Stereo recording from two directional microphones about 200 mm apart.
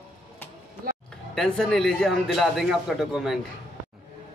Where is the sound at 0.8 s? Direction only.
45° right (ahead or behind).